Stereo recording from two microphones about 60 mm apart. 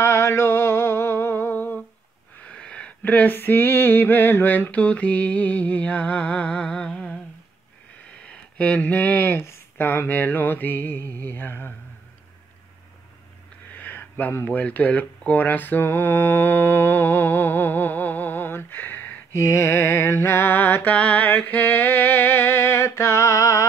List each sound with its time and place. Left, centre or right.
0.0 s music: left
2.4 s wheeze: centre
3.0 s speech: left
3.3 s mantra: left; by 7.2 s centre
8.2 s speech: centre
9.4 s music: left
13.7 s a sound: left
14.3 s speech: left
19.3 s music: left
22.8 s mantra: left